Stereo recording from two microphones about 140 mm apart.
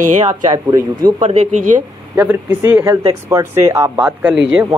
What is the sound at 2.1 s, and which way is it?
Speech, 10° right (ahead or behind).